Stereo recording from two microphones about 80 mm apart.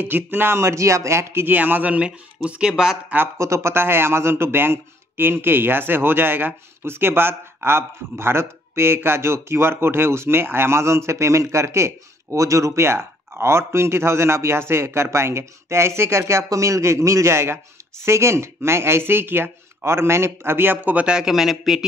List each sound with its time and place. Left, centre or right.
0.0 s speech: right; by 3.0 s centre
3.3 s speech: right; by 21.8 s centre